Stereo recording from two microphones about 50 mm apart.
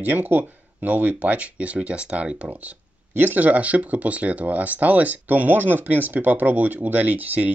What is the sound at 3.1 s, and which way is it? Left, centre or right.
Speech, right.